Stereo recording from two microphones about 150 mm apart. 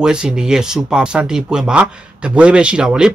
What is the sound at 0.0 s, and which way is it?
Speech, 5° right (ahead or behind).